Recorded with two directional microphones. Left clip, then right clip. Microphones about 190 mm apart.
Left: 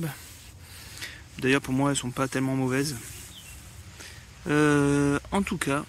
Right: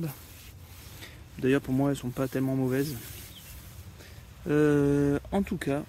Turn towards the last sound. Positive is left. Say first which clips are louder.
# left 3 dB
turn(degrees=-5)  # may be behind; listen again after turning